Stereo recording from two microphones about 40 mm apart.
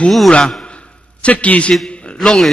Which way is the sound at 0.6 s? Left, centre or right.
Left.